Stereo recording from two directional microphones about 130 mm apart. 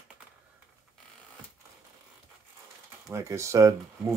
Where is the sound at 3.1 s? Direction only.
20° right (ahead or behind).